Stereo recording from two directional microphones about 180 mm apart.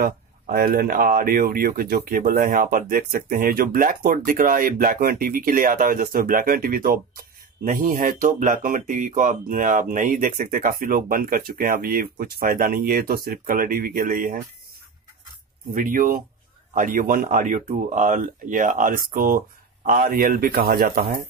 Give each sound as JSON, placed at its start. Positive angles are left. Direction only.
{"t": 0.0, "sound": "speech", "side_deg": -55}
{"t": 15.7, "sound": "speech", "side_deg": -50}